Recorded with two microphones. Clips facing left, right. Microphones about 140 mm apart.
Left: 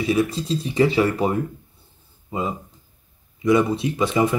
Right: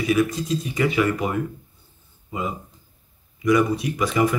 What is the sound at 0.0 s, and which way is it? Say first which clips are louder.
Speech: even; 30° left (ahead or behind).